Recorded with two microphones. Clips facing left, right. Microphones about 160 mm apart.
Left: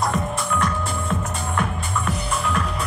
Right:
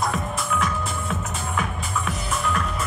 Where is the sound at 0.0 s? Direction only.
Centre (ahead or behind).